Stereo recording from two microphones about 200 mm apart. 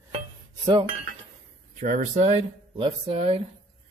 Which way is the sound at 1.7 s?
35° right (ahead or behind).